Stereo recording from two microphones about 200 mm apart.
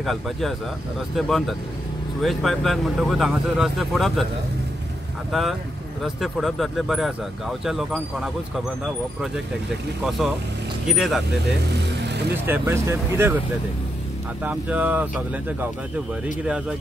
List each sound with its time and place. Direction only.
0.0 s speech: centre (ahead or behind)
5.3 s speech: centre (ahead or behind)
10.0 s speech: centre (ahead or behind)
12.0 s vehicle: 55° right (ahead or behind)
12.4 s speech: 10° right (ahead or behind)
14.4 s speech: 5° right (ahead or behind)